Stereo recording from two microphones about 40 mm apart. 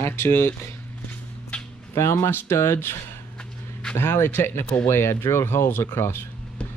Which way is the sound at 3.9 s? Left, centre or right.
Left.